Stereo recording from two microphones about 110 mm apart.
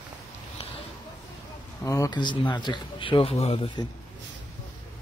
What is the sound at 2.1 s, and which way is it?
Speech, 45° left (ahead or behind).